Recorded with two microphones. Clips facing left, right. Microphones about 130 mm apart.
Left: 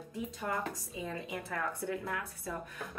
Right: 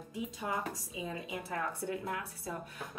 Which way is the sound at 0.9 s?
20° right (ahead or behind).